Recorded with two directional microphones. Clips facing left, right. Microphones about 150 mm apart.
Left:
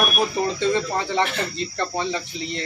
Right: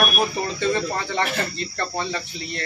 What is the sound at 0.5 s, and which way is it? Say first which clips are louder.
Speech: left 1 dB; 15° left (ahead or behind).